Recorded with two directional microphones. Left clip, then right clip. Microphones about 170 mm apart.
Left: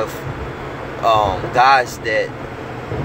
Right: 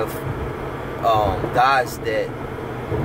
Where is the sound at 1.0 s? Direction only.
5° left (ahead or behind).